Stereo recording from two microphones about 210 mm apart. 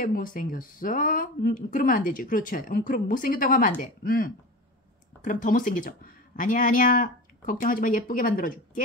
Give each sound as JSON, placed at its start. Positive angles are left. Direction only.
{"t": 0.0, "sound": "speech", "side_deg": 40}